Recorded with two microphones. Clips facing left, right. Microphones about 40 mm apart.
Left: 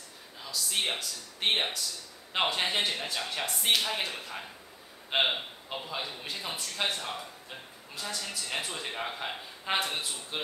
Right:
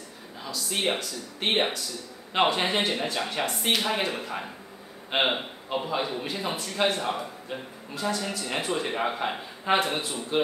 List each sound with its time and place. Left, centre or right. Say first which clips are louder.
0.4 s speech: right 3 dB; centre
7.9 s a woman's voice: right 8 dB; centre